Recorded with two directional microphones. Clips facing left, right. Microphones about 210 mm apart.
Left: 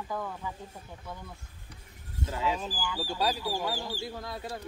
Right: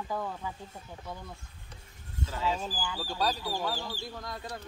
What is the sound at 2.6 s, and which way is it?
Speech, 15° right (ahead or behind).